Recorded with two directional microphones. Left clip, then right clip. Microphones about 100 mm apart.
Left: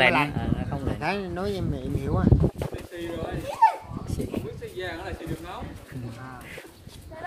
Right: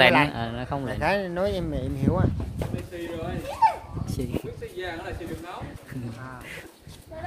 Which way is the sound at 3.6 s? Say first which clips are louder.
Left 1 dB; 10° left (ahead or behind).